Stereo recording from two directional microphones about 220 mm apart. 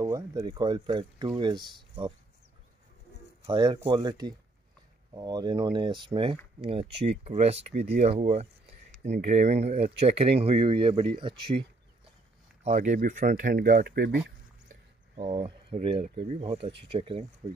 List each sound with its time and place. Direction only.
0.0 s speech: 15° right (ahead or behind)
3.4 s speech: 20° right (ahead or behind)
12.6 s speech: 35° right (ahead or behind)
14.7 s speech: 30° right (ahead or behind)